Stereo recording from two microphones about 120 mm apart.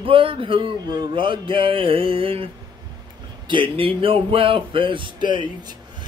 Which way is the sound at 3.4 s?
45° right (ahead or behind).